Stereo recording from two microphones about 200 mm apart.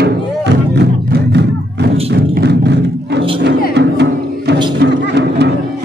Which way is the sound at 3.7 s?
60° right (ahead or behind).